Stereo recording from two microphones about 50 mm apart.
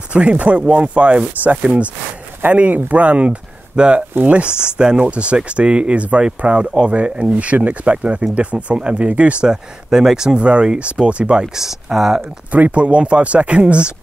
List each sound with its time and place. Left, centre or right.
0.1 s speech: right
9.5 s speech: centre
11.5 s speech: centre
12.5 s speech: right